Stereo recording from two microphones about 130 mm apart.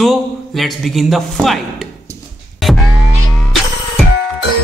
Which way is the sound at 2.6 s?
Centre (ahead or behind).